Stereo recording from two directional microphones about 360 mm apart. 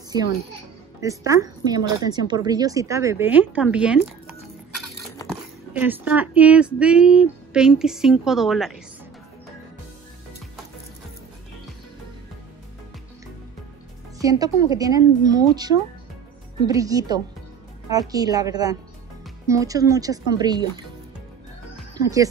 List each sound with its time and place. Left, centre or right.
0.1 s speech: centre
5.2 s a sound: centre
5.7 s speech: centre
14.1 s speech: centre
21.9 s speech: centre